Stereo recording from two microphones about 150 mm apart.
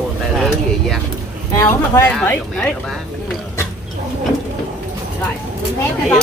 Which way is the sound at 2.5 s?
5° left (ahead or behind).